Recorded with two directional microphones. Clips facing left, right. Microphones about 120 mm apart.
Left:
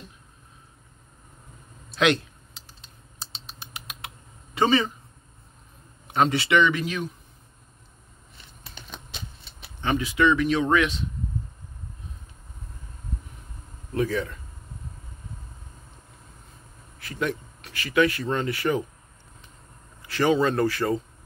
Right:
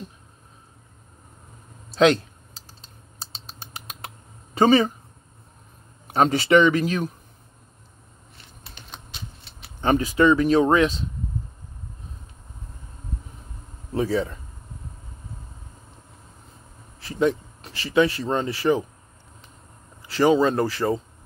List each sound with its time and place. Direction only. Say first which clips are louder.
1.9 s typing: right 5 dB; 35° right (ahead or behind)
4.6 s speech: right 5 dB; 40° right (ahead or behind)
6.1 s speech: right 4 dB; 40° right (ahead or behind)
9.8 s speech: right 4 dB; 40° right (ahead or behind)
13.9 s speech: right 2 dB; 30° right (ahead or behind)
17.0 s speech: right 7 dB; 25° right (ahead or behind)
20.0 s speech: right 3 dB; 30° right (ahead or behind)